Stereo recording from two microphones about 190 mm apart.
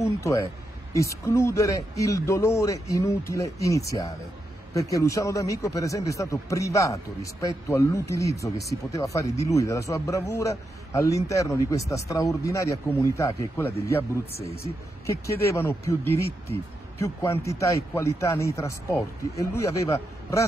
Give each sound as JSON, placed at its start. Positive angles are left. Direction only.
{"t": 0.0, "sound": "speech", "side_deg": 15}